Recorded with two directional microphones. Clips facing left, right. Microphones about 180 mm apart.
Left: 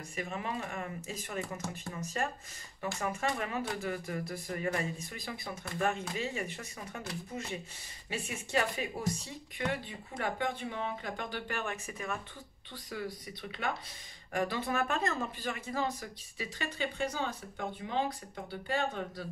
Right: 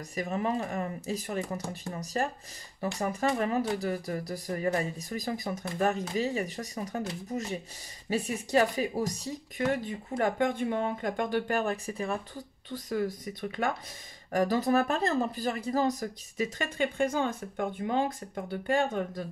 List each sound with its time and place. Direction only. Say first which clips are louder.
0.1 s speech: right 7 dB; 40° right (ahead or behind)